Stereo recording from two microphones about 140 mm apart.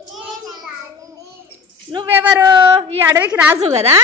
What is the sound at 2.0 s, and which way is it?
A woman's voice, 15° right (ahead or behind).